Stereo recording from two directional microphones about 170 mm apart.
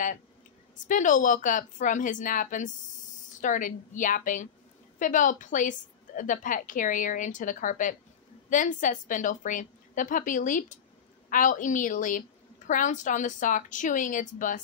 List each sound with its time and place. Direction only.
0.7 s a woman's voice: 50° left (ahead or behind)